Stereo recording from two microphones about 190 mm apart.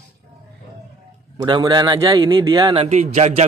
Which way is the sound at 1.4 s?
20° right (ahead or behind).